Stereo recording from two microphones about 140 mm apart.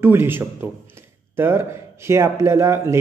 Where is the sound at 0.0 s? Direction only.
15° right (ahead or behind).